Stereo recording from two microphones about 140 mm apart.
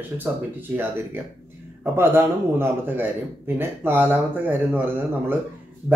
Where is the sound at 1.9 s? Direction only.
15° right (ahead or behind).